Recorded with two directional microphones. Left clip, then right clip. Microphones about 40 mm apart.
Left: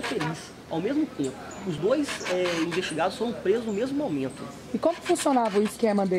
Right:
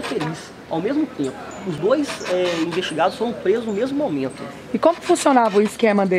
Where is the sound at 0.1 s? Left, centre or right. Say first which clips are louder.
Right 5 dB; centre.